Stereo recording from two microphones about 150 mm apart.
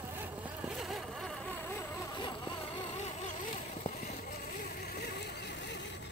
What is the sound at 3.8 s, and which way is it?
Vehicle, 50° left (ahead or behind).